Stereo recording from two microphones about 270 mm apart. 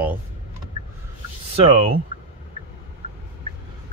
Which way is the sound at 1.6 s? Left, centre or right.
Right.